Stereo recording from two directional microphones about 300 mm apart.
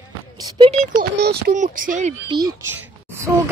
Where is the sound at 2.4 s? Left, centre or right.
Centre.